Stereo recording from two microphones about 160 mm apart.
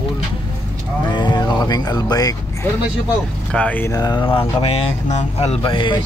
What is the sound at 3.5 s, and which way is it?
Speech, 10° left (ahead or behind).